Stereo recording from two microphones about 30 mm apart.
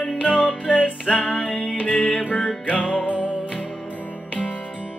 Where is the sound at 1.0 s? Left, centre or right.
Left.